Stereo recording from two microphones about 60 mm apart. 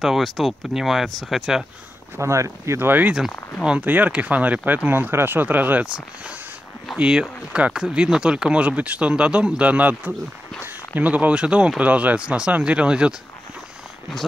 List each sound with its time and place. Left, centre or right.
0.0 s speech: centre
2.1 s speech: right
2.8 s speech: right
7.0 s speech: centre